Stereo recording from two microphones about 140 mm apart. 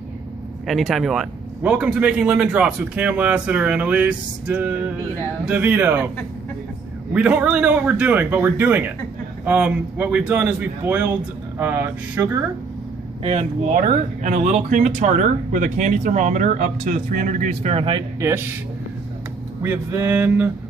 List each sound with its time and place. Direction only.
0.7 s a man's voice: centre (ahead or behind)
7.2 s a man's voice: 10° right (ahead or behind)
13.2 s speech: 40° right (ahead or behind)
13.7 s speech: 65° right (ahead or behind)
17.7 s speech: 35° right (ahead or behind)
18.2 s a man's voice: 15° right (ahead or behind)
19.6 s a man's voice: 20° right (ahead or behind)